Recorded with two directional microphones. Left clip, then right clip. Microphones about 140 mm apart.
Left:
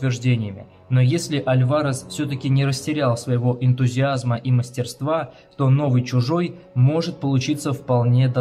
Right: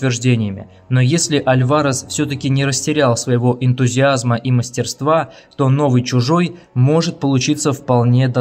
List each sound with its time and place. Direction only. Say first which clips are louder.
0.0 s speech: right 7 dB; 45° right (ahead or behind)